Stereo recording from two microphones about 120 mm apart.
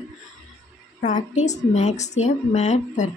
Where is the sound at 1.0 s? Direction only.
75° left (ahead or behind).